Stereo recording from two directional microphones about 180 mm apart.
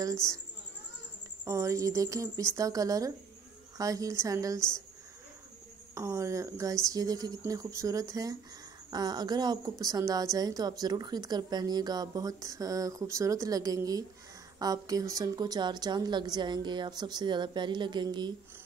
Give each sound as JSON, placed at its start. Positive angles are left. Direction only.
{"t": 1.4, "sound": "a woman's voice", "side_deg": -15}
{"t": 5.9, "sound": "a woman's voice", "side_deg": -15}